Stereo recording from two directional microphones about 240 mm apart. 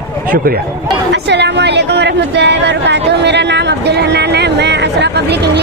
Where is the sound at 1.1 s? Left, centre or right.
Right.